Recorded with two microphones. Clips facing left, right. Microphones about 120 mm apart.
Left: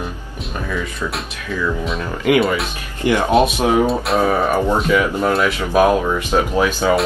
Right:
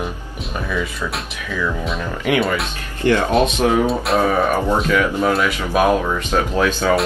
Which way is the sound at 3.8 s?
Centre (ahead or behind).